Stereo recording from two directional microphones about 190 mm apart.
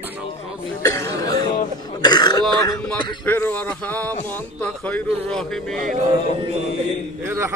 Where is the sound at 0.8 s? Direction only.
15° left (ahead or behind).